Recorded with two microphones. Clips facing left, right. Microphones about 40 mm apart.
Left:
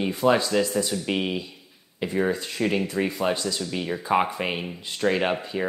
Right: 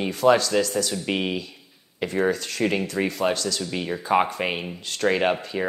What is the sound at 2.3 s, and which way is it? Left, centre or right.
Speech, left.